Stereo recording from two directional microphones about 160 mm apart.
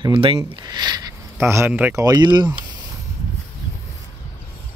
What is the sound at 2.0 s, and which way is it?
Speech, 25° right (ahead or behind).